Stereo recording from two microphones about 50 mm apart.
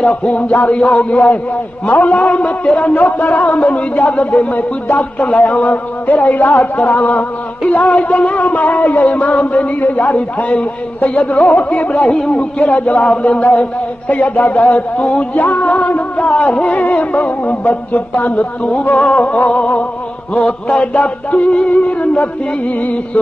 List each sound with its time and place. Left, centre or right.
0.0 s music: left
1.9 s a man's voice: left
7.6 s music: left
12.5 s a man's voice: left
18.9 s music: left